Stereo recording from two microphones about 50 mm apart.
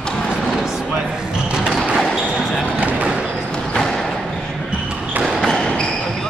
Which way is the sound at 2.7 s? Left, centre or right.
Right.